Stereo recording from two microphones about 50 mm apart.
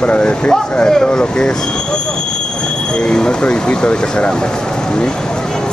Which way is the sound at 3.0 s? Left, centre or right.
Centre.